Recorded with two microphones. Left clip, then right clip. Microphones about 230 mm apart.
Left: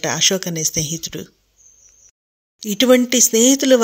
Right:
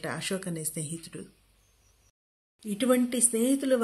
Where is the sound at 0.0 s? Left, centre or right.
Left.